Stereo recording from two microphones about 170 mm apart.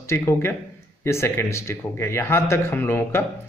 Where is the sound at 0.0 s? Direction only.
15° left (ahead or behind).